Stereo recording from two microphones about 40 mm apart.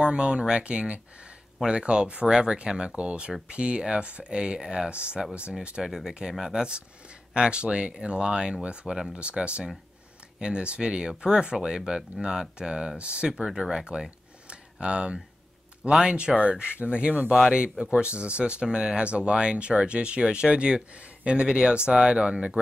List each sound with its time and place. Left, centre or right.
0.0 s speech: right
5.9 s speech: centre
6.4 s speech: centre
13.3 s speech: centre
14.5 s a sound: right
16.1 s speech: right